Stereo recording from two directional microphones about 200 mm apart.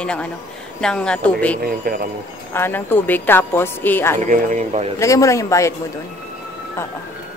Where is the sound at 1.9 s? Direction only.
50° right (ahead or behind).